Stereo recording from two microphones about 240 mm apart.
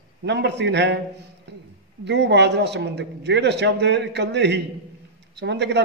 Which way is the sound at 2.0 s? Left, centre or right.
Right.